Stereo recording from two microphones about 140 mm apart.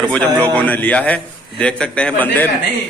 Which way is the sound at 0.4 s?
10° left (ahead or behind).